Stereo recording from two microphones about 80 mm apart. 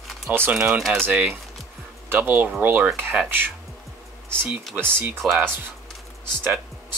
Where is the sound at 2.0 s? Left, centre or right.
Right.